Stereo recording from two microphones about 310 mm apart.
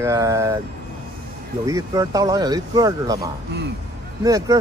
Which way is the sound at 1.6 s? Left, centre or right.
Centre.